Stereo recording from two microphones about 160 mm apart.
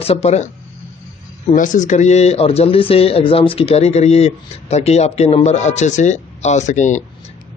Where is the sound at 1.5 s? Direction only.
55° left (ahead or behind).